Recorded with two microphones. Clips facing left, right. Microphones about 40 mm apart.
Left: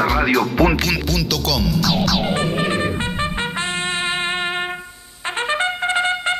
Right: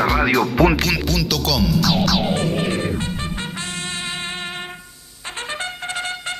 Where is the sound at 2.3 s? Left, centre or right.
Centre.